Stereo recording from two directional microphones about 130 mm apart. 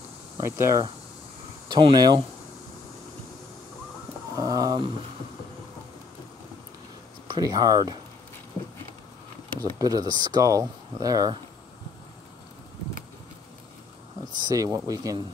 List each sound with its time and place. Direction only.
0.4 s speech: 20° right (ahead or behind)
1.7 s speech: 40° right (ahead or behind)
4.4 s speech: 25° right (ahead or behind)
7.2 s speech: 30° right (ahead or behind)
9.8 s speech: 30° right (ahead or behind)
14.3 s speech: 30° right (ahead or behind)